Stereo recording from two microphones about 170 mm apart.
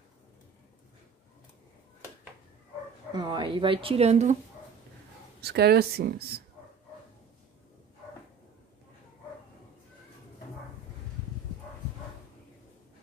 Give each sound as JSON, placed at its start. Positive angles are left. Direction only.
{"t": 3.1, "sound": "a woman's voice", "side_deg": -25}
{"t": 5.4, "sound": "speech", "side_deg": -70}